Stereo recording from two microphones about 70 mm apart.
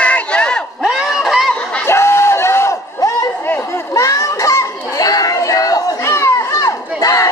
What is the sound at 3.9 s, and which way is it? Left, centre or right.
Children playing, left.